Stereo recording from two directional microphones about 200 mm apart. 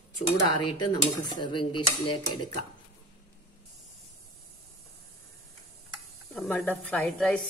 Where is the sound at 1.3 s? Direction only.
25° left (ahead or behind).